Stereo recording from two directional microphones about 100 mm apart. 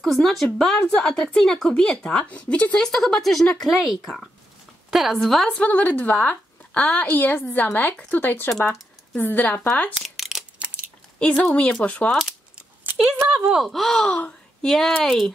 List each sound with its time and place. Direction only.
0.0 s speech: centre (ahead or behind)
5.6 s a woman's voice: 15° left (ahead or behind)
9.9 s a sound: centre (ahead or behind)
11.1 s a woman's voice: 10° left (ahead or behind)
12.9 s speech: 5° right (ahead or behind)